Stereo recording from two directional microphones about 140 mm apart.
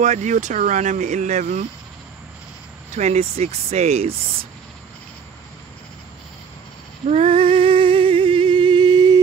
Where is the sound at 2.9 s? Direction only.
50° right (ahead or behind).